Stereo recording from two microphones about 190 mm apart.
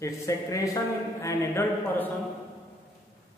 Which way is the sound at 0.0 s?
15° left (ahead or behind).